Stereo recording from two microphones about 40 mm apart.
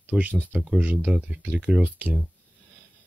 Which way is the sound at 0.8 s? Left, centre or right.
Right.